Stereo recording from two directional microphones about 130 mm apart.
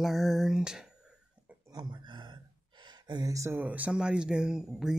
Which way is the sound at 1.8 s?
35° right (ahead or behind).